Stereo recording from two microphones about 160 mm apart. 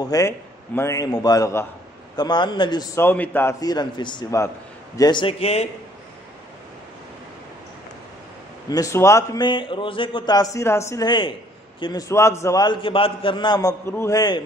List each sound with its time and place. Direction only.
0.1 s a man's voice: 25° left (ahead or behind)
3.0 s a man's voice: 10° left (ahead or behind)
3.6 s a man's voice: 25° left (ahead or behind)
8.6 s a man's voice: 20° left (ahead or behind)